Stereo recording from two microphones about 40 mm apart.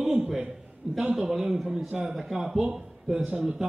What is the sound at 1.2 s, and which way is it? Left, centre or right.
Speech, centre.